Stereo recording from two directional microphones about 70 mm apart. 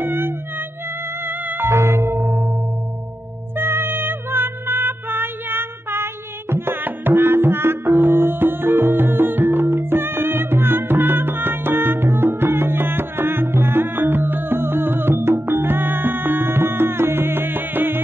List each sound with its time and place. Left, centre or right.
0.0 s music: right
3.5 s music: right